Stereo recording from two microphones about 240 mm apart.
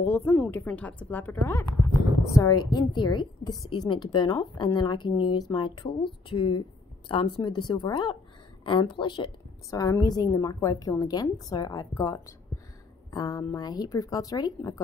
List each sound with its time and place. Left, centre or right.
0.0 s a woman's voice: centre
7.1 s a woman's voice: centre